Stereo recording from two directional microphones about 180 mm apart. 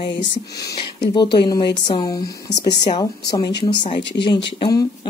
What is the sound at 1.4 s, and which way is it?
Speech, 25° left (ahead or behind).